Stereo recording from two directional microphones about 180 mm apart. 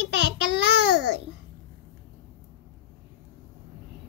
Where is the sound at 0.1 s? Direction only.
75° right (ahead or behind).